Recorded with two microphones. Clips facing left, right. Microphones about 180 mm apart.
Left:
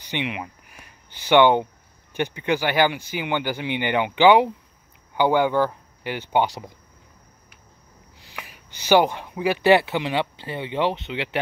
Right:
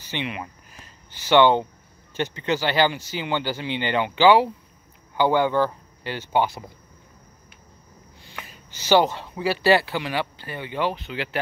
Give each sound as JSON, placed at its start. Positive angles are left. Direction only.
{"t": 0.0, "sound": "speech", "side_deg": 15}
{"t": 8.4, "sound": "speech", "side_deg": 10}